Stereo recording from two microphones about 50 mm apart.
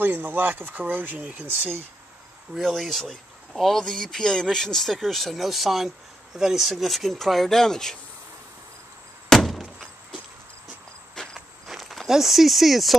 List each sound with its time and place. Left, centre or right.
0.0 s speech: right
2.5 s speech: centre
9.3 s a sound: centre
11.2 s walk: centre
11.6 s walk: centre
12.1 s speech: centre